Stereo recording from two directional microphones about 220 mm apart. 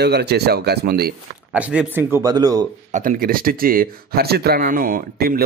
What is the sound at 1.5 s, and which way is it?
Speech, 5° right (ahead or behind).